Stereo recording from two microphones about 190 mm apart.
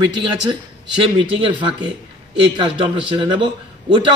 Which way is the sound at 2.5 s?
25° right (ahead or behind).